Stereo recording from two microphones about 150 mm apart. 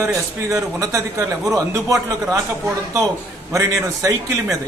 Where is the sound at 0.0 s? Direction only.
20° right (ahead or behind).